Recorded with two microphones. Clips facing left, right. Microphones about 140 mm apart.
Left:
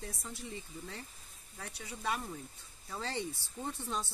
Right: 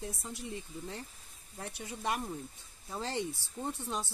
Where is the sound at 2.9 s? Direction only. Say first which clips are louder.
Right 3 dB; 20° right (ahead or behind).